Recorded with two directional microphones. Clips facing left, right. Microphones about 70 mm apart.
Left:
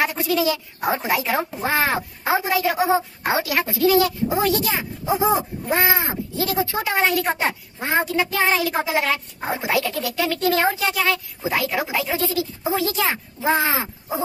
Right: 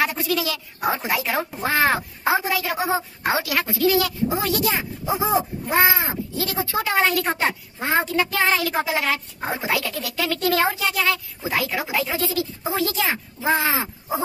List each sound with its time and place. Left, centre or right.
0.0 s speech: left